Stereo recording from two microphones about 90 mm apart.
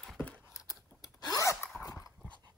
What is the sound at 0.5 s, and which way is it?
Scissors, 35° left (ahead or behind).